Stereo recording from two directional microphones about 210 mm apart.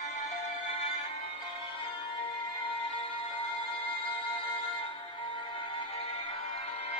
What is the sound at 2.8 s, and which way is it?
Music, 25° left (ahead or behind).